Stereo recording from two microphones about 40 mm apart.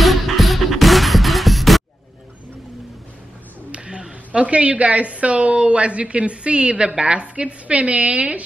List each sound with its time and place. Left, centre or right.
0.0 s music: centre
3.7 s a woman's voice: right